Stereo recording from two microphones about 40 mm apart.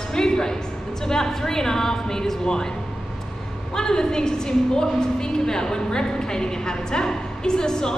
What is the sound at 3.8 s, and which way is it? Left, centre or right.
A woman's voice, centre.